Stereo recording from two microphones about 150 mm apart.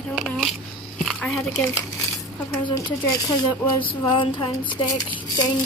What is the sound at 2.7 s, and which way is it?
Speech, 30° left (ahead or behind).